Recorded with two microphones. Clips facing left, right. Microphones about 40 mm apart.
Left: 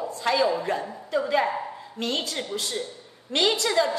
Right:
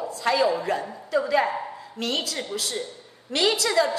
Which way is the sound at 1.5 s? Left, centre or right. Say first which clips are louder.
Even; centre.